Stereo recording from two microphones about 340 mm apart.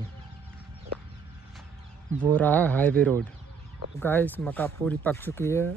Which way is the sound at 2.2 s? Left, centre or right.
Centre.